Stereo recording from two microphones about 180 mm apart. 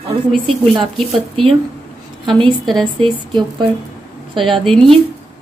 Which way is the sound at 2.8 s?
25° right (ahead or behind).